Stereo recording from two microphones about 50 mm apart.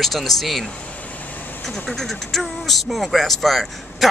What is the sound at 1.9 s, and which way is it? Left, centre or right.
A man's voice, centre.